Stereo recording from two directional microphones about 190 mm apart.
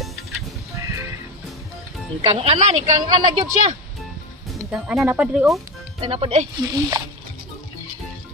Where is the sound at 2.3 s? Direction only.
35° right (ahead or behind).